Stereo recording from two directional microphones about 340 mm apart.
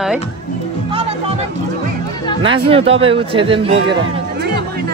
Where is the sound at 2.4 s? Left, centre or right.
Centre.